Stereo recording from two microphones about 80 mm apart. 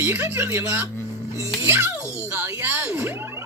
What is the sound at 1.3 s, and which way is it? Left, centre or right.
Music, right.